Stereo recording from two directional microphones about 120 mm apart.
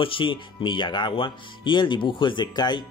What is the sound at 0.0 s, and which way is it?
Speech, 45° left (ahead or behind).